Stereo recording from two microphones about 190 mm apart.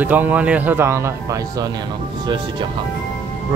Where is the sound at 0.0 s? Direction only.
10° right (ahead or behind).